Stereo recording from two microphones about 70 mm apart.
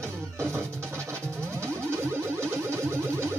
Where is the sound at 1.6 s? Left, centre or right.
Right.